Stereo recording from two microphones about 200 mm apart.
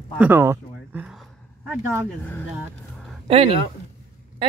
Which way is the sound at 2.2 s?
10° left (ahead or behind).